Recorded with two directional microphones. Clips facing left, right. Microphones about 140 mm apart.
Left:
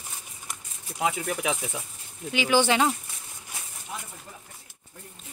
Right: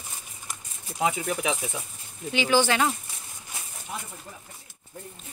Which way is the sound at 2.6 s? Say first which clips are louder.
Left 1 dB; 20° left (ahead or behind).